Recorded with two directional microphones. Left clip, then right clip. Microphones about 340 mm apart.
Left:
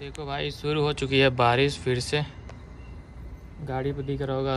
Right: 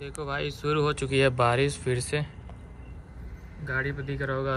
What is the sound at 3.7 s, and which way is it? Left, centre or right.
Speech, centre.